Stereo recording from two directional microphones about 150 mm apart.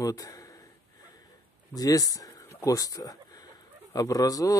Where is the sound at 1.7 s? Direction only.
25° left (ahead or behind).